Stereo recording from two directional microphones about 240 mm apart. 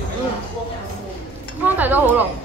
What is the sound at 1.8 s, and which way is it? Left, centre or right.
Speech, centre.